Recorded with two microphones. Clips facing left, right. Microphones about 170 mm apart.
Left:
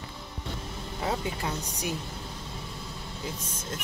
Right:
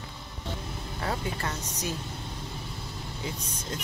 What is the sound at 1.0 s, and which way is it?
Speech, 15° left (ahead or behind).